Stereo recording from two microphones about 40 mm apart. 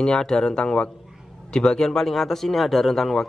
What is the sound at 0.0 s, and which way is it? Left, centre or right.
Speech, centre.